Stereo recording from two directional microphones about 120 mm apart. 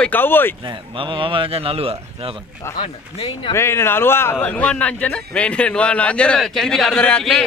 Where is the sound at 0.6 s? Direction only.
45° right (ahead or behind).